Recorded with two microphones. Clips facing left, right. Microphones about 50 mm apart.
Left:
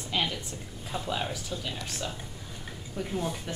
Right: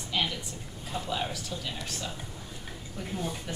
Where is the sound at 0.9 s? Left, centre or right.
Centre.